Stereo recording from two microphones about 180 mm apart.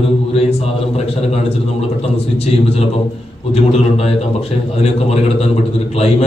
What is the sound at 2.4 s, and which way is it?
A man's voice, 35° left (ahead or behind).